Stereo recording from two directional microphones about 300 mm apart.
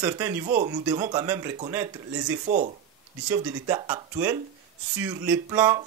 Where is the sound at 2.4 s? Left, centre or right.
Right.